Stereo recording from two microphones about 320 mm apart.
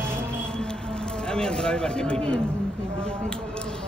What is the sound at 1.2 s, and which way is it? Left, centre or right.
Speech, centre.